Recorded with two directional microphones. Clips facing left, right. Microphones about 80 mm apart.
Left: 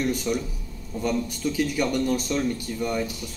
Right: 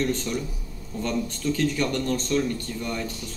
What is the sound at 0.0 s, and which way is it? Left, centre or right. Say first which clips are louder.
Speech: left 1 dB; centre.